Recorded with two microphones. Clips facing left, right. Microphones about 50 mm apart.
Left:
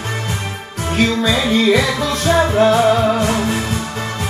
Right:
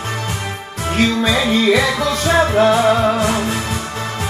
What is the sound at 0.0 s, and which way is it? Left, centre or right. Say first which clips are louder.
Music: even; right.